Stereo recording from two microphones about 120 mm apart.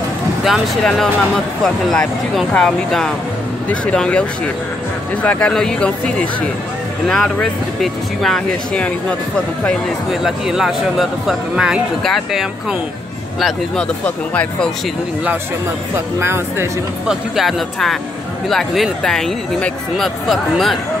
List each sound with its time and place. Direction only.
0.4 s speech: centre (ahead or behind)
7.8 s speech: centre (ahead or behind)
10.2 s speech: 5° right (ahead or behind)
14.0 s speech: 10° left (ahead or behind)
16.2 s speech: 20° right (ahead or behind)
17.1 s speech: centre (ahead or behind)